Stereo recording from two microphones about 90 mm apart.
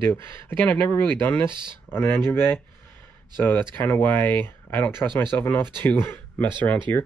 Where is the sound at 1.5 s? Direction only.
60° right (ahead or behind).